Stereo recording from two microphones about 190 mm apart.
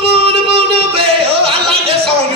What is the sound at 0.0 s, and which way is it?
Music, 30° right (ahead or behind).